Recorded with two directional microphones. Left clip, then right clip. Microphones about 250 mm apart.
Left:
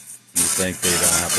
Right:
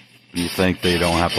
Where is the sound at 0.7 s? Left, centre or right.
Centre.